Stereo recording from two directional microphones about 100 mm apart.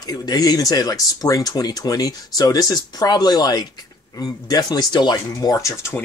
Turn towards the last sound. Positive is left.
turn(degrees=30)  # may be behind; listen again after turning